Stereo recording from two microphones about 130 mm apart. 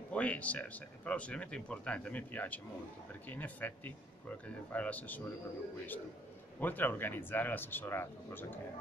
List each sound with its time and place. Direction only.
0.1 s speech: 10° left (ahead or behind)
6.6 s speech: 15° left (ahead or behind)